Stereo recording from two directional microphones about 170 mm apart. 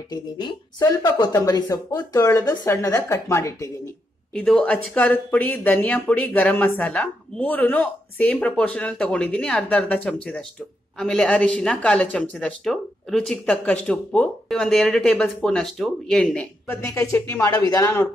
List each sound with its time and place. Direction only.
0.1 s speech: 25° left (ahead or behind)
4.3 s speech: 5° left (ahead or behind)